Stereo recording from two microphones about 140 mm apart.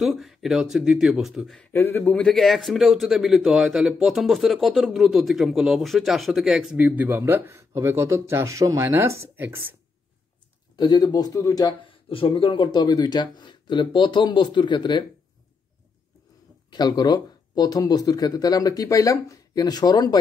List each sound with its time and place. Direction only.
0.0 s speech: centre (ahead or behind)
1.7 s speech: 15° left (ahead or behind)
2.1 s speech: 5° left (ahead or behind); by 9.8 s 15° right (ahead or behind)
10.8 s speech: 30° left (ahead or behind)
12.1 s speech: 40° left (ahead or behind)
16.7 s speech: 30° left (ahead or behind)